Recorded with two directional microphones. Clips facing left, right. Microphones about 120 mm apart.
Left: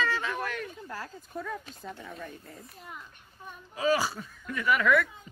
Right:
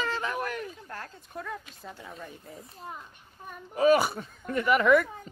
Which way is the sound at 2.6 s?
30° right (ahead or behind).